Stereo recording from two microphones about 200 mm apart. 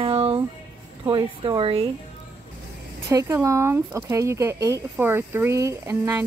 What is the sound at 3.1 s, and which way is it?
Speech, 15° right (ahead or behind).